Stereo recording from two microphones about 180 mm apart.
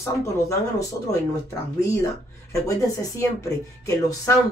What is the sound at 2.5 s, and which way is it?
Speech, 15° left (ahead or behind).